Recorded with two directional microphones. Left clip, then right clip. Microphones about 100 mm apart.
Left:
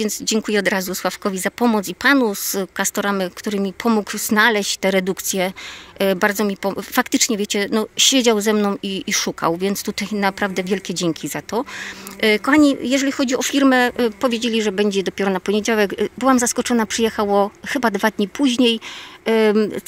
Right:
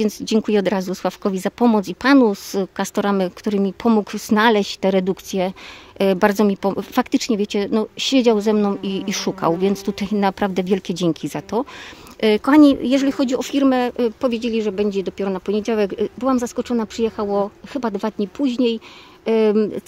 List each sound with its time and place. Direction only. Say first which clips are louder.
0.0 s speech: right 1 dB; 50° right (ahead or behind)
2.2 s speech: right 2 dB; 30° right (ahead or behind)
2.8 s speech: even; 50° right (ahead or behind)
5.9 s speech: right 1 dB; 45° right (ahead or behind); by 8.9 s 30° right (ahead or behind)
8.9 s speech: left 2 dB; 45° right (ahead or behind); by 16.1 s 10° right (ahead or behind)
16.2 s speech: left 6 dB; centre (ahead or behind)
19.2 s speech: left 1 dB; 15° right (ahead or behind)